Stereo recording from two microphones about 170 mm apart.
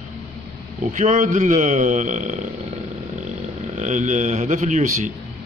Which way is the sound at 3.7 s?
45° right (ahead or behind).